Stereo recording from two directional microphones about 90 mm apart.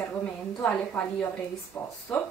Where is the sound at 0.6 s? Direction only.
15° left (ahead or behind).